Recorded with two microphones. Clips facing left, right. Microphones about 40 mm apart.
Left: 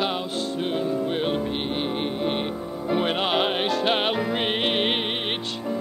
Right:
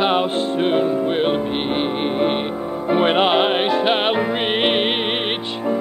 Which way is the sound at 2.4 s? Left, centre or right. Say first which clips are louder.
Right 5 dB; right.